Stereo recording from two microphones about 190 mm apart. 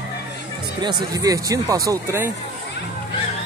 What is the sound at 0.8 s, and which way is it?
Speech, 20° right (ahead or behind).